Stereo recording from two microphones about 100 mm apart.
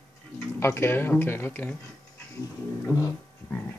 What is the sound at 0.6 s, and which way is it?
Speech, 25° left (ahead or behind).